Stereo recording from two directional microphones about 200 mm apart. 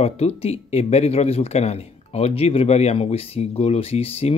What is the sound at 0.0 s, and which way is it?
Speech, 30° left (ahead or behind).